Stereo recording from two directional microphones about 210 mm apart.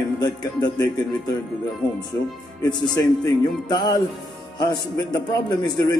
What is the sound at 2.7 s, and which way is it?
A man's voice, 20° left (ahead or behind).